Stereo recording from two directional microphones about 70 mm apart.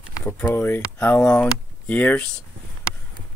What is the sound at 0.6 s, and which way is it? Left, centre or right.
Speech, left.